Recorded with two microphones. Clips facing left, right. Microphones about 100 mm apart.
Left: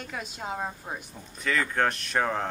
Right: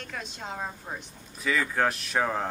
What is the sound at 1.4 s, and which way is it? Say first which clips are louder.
A woman's voice: even; 5° right (ahead or behind).